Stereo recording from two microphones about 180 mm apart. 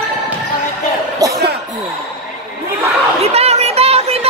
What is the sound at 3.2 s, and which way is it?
Chatter, 35° right (ahead or behind).